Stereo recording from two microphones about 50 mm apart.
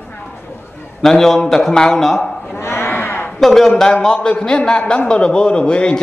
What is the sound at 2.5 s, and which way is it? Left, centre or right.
Speech, left.